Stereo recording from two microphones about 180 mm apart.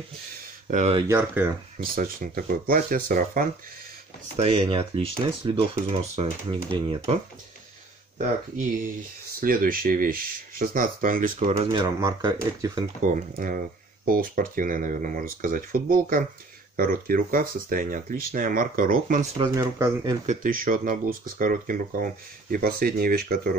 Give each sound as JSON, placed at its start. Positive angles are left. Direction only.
{"t": 0.7, "sound": "speech", "side_deg": -40}
{"t": 1.0, "sound": "speech", "side_deg": -10}
{"t": 2.0, "sound": "speech", "side_deg": -50}
{"t": 4.4, "sound": "speech", "side_deg": -30}
{"t": 8.8, "sound": "speech", "side_deg": -50}
{"t": 11.3, "sound": "speech", "side_deg": -35}
{"t": 13.0, "sound": "speech", "side_deg": -50}
{"t": 19.3, "sound": "speech", "side_deg": -25}
{"t": 20.2, "sound": "speech", "side_deg": -50}